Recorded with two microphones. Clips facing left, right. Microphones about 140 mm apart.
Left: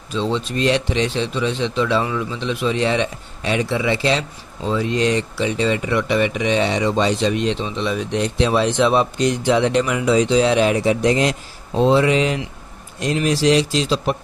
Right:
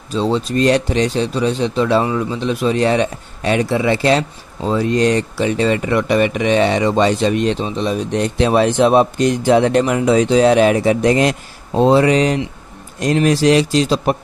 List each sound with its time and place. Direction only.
0.1 s speech: 40° right (ahead or behind)